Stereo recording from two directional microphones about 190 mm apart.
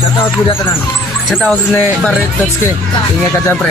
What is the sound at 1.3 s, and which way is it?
Speech, 5° left (ahead or behind).